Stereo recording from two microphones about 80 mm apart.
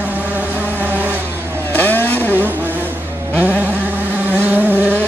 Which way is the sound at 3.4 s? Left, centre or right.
Centre.